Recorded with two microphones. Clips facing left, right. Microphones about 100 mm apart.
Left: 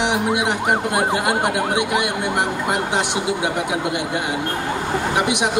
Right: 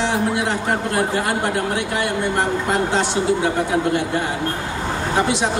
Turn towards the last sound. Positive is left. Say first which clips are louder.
# even
turn(degrees=15)  # may be behind; listen again after turning